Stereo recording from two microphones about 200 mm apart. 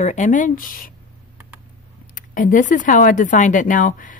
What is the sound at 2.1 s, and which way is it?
A woman's voice, 40° left (ahead or behind).